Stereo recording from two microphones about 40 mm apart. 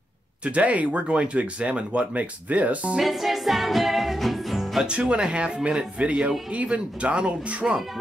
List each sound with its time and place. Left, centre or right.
0.4 s speech: right
3.0 s music: centre
4.8 s speech: right